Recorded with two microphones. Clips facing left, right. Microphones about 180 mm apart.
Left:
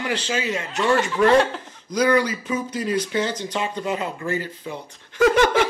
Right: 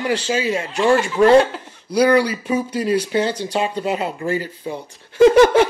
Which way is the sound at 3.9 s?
30° right (ahead or behind).